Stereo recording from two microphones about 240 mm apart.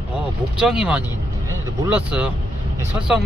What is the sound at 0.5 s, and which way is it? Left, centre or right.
Speech, centre.